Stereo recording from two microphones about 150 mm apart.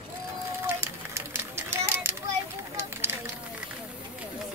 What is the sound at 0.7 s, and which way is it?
Children playing, 15° right (ahead or behind).